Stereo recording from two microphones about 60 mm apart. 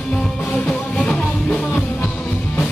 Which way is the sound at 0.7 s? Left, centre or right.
Centre.